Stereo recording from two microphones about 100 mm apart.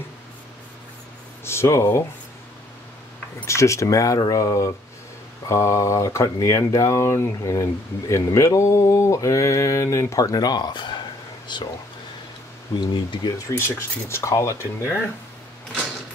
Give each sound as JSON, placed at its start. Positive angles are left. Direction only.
{"t": 1.4, "sound": "speech", "side_deg": 25}
{"t": 3.4, "sound": "speech", "side_deg": 30}
{"t": 12.8, "sound": "speech", "side_deg": 50}
{"t": 13.5, "sound": "speech", "side_deg": 25}